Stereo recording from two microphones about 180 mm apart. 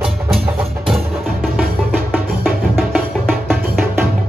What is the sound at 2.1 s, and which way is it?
Music, 5° right (ahead or behind).